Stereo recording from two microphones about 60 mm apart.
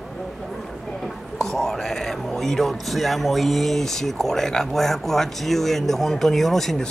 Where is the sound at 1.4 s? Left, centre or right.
Centre.